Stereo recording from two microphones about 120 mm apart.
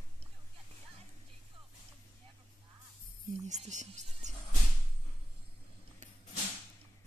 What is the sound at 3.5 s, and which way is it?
Speech, 85° right.